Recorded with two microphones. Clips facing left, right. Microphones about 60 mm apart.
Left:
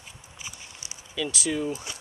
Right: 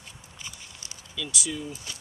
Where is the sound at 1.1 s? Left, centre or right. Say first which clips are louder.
Left 5 dB; left.